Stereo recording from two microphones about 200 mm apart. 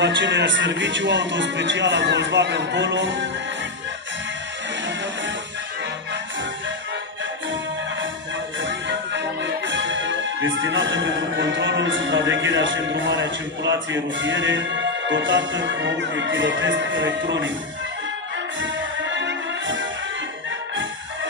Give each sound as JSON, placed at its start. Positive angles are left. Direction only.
{"t": 0.0, "sound": "a man's voice", "side_deg": -65}
{"t": 8.5, "sound": "music", "side_deg": -65}
{"t": 18.6, "sound": "music", "side_deg": -65}